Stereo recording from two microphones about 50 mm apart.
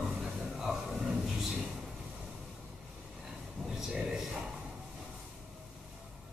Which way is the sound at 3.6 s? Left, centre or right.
Centre.